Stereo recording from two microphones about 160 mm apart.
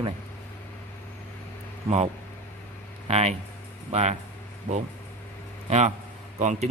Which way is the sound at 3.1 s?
40° right (ahead or behind).